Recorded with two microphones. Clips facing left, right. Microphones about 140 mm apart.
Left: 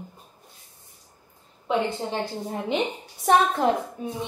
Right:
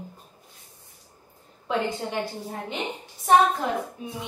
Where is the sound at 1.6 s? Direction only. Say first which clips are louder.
Left 2 dB; 20° left (ahead or behind).